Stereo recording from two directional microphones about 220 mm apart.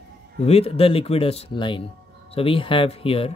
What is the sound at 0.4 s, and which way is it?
Speech, 30° left (ahead or behind).